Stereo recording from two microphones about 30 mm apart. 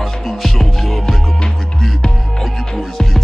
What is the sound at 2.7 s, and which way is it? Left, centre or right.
Music, centre.